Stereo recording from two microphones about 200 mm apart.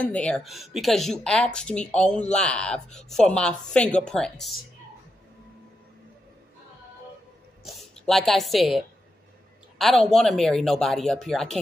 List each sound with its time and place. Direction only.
0.0 s speech: 5° left (ahead or behind)
7.6 s speech: centre (ahead or behind)